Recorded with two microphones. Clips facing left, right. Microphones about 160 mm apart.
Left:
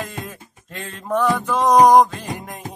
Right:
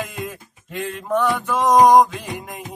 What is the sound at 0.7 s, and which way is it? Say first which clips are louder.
Mantra: right 1 dB; centre (ahead or behind).